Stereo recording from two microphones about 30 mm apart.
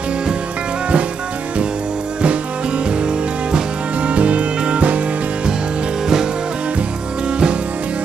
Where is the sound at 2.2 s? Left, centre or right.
Right.